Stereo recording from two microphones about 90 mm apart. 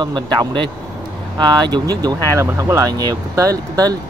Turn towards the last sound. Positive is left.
turn(degrees=-40)  # may be behind; listen again after turning